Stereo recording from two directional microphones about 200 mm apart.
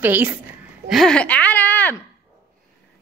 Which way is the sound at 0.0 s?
10° right (ahead or behind).